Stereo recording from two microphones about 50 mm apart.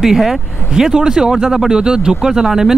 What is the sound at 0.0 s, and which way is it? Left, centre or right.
Speech, centre.